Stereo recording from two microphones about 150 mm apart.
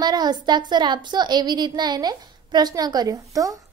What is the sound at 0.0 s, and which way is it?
A woman's voice, 25° right (ahead or behind).